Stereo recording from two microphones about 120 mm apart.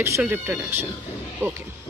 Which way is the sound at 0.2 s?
15° right (ahead or behind).